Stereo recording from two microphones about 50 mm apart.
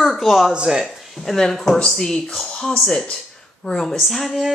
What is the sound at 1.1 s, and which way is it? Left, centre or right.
Speech, centre.